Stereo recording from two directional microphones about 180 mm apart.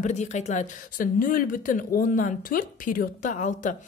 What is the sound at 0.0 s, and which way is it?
A woman's voice, 40° left (ahead or behind).